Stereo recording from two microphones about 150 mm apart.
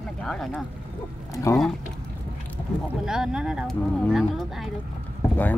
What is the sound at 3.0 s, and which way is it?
Speech, 5° right (ahead or behind).